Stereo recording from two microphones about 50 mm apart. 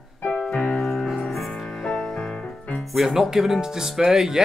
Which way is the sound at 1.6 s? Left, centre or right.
Centre.